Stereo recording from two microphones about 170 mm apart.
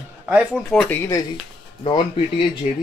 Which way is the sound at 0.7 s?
5° left (ahead or behind).